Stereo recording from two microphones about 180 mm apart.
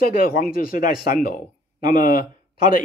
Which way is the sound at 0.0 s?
55° left (ahead or behind).